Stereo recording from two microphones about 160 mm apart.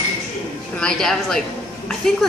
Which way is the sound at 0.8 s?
5° left (ahead or behind).